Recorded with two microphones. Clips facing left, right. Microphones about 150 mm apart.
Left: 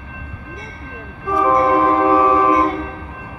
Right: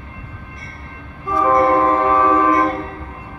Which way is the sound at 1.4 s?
5° left (ahead or behind).